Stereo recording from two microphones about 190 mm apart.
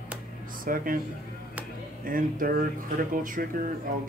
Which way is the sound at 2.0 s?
45° right (ahead or behind).